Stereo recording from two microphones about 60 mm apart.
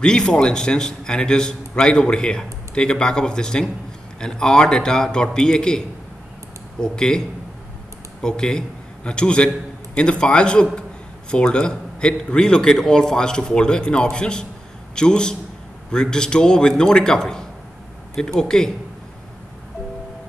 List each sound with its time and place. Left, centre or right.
0.0 s a man's voice: centre